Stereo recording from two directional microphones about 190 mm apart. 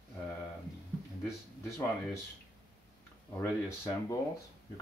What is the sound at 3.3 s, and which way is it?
Speech, 15° left (ahead or behind).